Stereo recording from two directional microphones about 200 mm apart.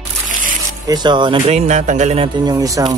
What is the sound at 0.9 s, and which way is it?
Speech, 20° right (ahead or behind).